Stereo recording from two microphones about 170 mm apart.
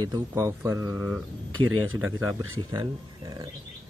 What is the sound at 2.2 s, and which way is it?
Speech, 25° right (ahead or behind).